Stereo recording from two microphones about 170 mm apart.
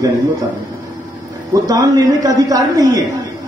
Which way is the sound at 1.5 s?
20° right (ahead or behind).